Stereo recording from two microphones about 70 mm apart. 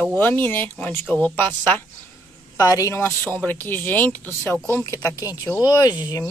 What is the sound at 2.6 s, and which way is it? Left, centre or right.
Speech, left.